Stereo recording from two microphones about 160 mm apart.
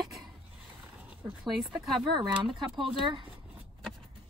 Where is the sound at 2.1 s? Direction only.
30° right (ahead or behind).